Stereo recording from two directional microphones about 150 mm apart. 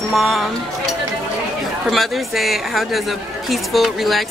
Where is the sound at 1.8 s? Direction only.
Centre (ahead or behind).